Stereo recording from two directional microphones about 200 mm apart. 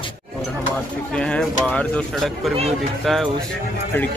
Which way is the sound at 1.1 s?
5° left (ahead or behind).